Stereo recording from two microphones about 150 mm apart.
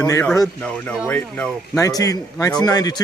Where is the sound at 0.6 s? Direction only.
5° left (ahead or behind).